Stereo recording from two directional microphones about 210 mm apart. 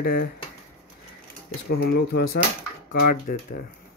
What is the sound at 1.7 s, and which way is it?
Speech, 50° left (ahead or behind).